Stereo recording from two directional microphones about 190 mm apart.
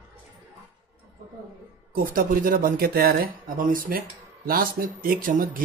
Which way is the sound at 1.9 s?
50° right (ahead or behind).